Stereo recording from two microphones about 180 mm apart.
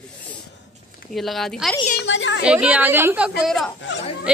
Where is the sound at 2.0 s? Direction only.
90° left.